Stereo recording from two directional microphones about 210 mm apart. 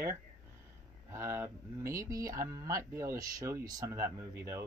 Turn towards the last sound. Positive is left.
turn(degrees=-15)  # may be behind; listen again after turning